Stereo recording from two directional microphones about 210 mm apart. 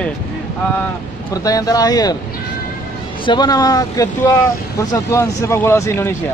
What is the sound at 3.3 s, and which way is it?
Speech, 20° left (ahead or behind).